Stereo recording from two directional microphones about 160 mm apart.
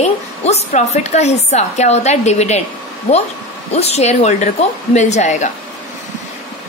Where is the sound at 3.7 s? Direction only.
40° left (ahead or behind).